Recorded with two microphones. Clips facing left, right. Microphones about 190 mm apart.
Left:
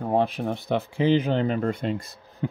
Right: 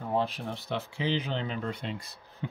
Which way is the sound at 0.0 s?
55° left (ahead or behind).